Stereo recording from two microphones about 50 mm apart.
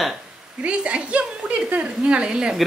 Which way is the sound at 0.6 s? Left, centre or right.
Right.